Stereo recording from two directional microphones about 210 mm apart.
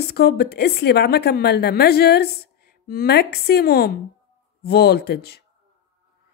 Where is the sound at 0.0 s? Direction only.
50° left (ahead or behind).